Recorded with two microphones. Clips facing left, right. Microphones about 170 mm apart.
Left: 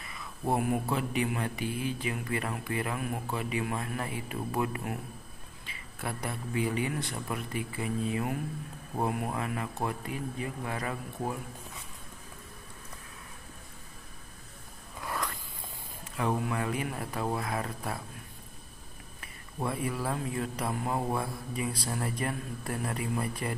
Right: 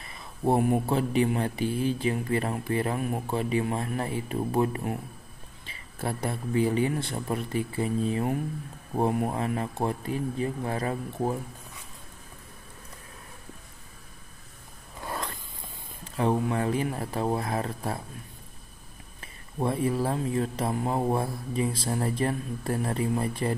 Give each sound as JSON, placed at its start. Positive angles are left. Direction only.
{"t": 0.0, "sound": "speech", "side_deg": -30}
{"t": 15.0, "sound": "a sound", "side_deg": -25}
{"t": 16.0, "sound": "speech", "side_deg": -30}
{"t": 19.6, "sound": "speech", "side_deg": -30}